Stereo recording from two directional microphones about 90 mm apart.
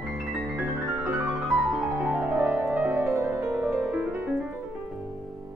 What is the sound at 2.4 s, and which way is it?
Music, 20° right (ahead or behind).